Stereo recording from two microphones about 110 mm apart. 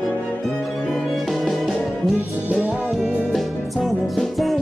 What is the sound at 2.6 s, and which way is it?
Music, 15° right (ahead or behind).